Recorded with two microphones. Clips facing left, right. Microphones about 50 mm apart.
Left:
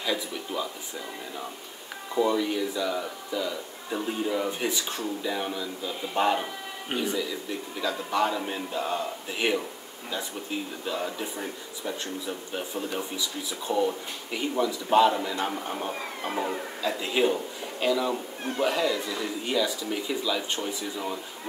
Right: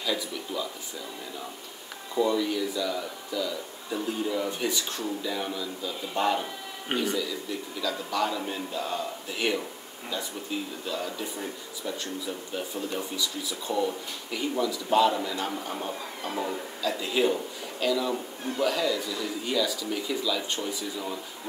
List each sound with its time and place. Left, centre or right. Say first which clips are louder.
0.0 s speech: left 1 dB; left
2.1 s speech: left 1 dB; left
10.9 s speech: left 3 dB; left
16.8 s speech: even; centre